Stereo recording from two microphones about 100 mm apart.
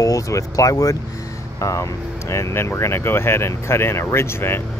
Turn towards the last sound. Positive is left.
turn(degrees=25)  # may be behind; listen again after turning